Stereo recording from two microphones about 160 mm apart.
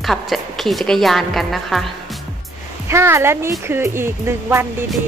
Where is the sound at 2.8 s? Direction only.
15° right (ahead or behind).